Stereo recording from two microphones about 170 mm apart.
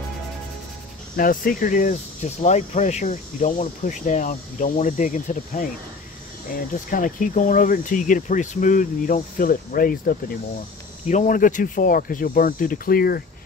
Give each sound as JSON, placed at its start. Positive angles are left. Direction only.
{"t": 1.1, "sound": "speech", "side_deg": 55}